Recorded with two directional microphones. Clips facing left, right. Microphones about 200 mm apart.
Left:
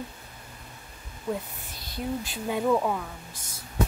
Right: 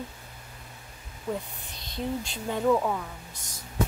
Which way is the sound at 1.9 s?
5° left (ahead or behind).